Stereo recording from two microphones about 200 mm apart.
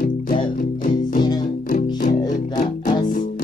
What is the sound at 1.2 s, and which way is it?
Music, 20° left (ahead or behind).